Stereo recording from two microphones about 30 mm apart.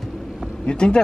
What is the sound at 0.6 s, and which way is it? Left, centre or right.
Speech, left.